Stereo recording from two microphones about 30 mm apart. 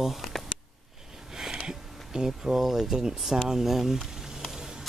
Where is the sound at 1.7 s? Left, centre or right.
Centre.